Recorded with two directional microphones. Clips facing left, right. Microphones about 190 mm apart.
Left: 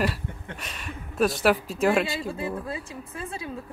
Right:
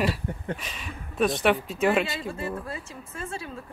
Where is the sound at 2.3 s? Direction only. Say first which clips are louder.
Left 2 dB; 15° left (ahead or behind).